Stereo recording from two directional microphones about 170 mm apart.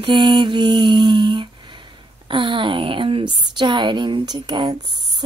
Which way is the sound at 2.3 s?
30° right (ahead or behind).